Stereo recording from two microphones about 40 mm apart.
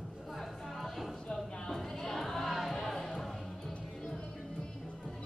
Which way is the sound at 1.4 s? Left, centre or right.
Centre.